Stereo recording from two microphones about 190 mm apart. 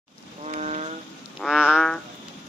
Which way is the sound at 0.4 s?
35° right (ahead or behind).